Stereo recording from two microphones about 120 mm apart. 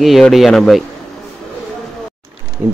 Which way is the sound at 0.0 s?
Centre (ahead or behind).